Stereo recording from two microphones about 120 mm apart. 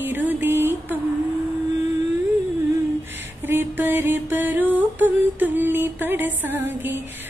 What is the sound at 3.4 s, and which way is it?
Music, 15° right (ahead or behind).